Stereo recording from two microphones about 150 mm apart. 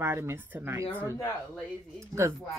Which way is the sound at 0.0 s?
15° right (ahead or behind).